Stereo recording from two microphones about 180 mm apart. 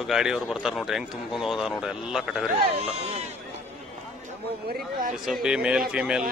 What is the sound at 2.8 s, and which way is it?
Speech, 35° right (ahead or behind).